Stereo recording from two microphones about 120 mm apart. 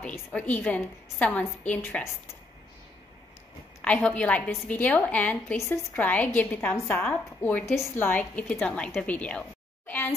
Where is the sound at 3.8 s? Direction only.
10° left (ahead or behind).